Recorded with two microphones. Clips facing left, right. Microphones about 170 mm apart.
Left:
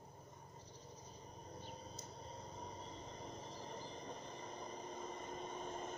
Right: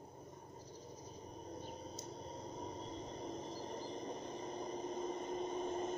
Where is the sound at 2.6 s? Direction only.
35° right (ahead or behind).